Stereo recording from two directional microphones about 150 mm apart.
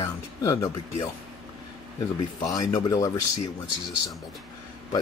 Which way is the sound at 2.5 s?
25° left (ahead or behind).